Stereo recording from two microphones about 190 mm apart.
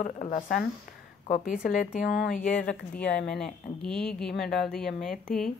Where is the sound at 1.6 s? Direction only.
45° left (ahead or behind).